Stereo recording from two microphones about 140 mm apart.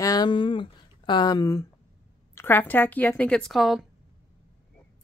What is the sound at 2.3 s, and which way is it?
A woman's voice, 15° left (ahead or behind).